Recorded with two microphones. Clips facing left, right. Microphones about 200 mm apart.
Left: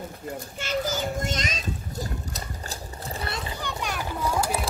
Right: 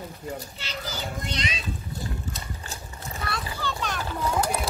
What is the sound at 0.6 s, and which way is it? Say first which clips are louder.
Children playing: left 8 dB; 45° left (ahead or behind).